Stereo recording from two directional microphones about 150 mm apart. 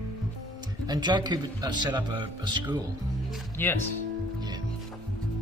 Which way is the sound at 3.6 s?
15° left (ahead or behind).